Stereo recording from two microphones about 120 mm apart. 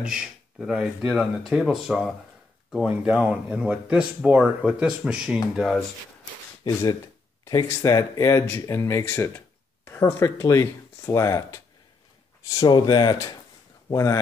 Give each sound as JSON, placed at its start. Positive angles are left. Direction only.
{"t": 0.0, "sound": "speech", "side_deg": -5}
{"t": 6.6, "sound": "speech", "side_deg": 30}